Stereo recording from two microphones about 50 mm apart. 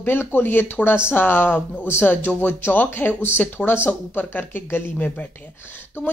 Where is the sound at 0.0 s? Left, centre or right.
Left.